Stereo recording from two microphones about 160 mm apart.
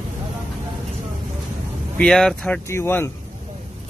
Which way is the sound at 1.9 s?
5° left (ahead or behind).